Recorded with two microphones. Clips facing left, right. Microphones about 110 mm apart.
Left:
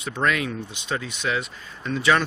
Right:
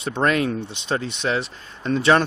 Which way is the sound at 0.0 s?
35° right (ahead or behind).